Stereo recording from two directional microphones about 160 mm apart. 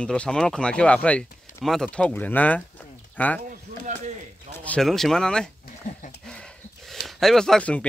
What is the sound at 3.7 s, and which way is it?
Chop, 55° right (ahead or behind).